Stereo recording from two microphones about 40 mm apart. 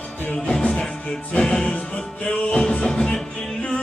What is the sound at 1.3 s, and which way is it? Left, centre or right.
Music, centre.